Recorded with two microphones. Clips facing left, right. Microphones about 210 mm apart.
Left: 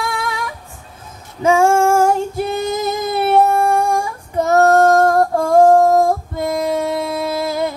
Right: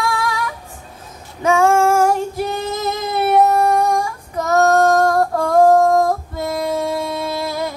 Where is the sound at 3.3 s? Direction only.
30° left (ahead or behind).